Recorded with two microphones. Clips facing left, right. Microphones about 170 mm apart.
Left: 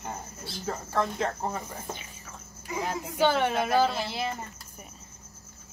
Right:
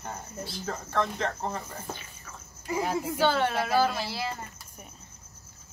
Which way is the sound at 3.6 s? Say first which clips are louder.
Left 1 dB; 20° left (ahead or behind).